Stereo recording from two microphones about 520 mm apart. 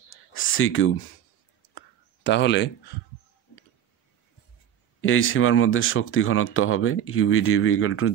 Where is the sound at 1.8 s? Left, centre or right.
Left.